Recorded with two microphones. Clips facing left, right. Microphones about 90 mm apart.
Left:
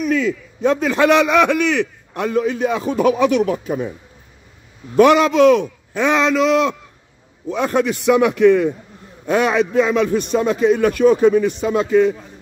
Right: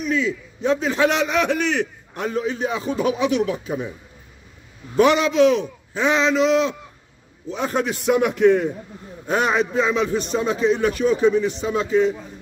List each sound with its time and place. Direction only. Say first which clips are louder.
0.0 s a man's voice: left 4 dB; 55° left (ahead or behind)
4.9 s a man's voice: left 4 dB; 60° left (ahead or behind)
7.5 s a man's voice: left 5 dB; 75° left (ahead or behind)